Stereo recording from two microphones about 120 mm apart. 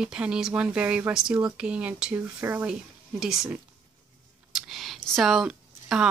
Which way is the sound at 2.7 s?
5° right (ahead or behind).